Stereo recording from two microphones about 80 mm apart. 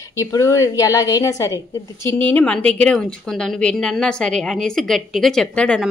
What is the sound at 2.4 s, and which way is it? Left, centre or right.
A woman's voice, centre.